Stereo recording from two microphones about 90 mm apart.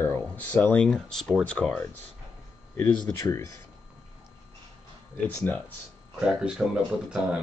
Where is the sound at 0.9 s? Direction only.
5° left (ahead or behind).